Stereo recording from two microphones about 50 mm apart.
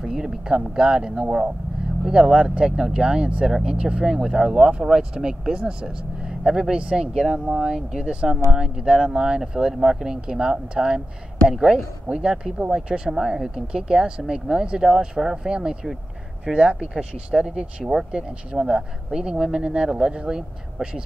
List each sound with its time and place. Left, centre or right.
0.0 s speech: centre